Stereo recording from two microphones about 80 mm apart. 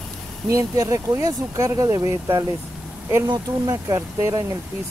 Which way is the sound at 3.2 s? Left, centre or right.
Right.